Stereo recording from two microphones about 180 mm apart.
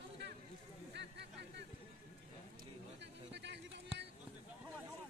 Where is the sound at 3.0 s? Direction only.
75° right (ahead or behind).